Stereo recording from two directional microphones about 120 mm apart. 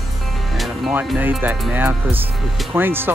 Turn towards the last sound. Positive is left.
turn(degrees=-15)  # may be behind; listen again after turning